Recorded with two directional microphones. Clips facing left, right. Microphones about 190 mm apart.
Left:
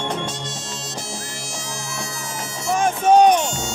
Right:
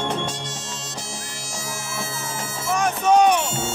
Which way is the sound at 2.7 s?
30° left (ahead or behind).